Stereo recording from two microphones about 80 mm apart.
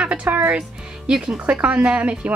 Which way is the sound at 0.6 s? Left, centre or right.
Centre.